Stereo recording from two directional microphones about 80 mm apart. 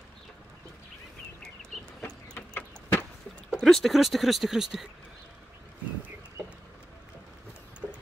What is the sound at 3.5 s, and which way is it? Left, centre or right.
Speech, centre.